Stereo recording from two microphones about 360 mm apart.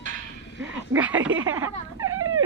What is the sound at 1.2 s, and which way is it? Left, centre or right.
Speech, right.